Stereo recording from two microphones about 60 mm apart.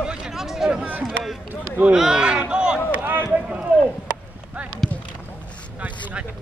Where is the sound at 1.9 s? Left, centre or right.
Centre.